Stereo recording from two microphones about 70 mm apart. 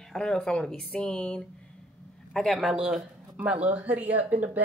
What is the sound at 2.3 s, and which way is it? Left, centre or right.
Speech, centre.